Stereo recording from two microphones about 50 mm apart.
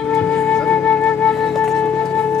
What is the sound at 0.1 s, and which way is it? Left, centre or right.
Music, left.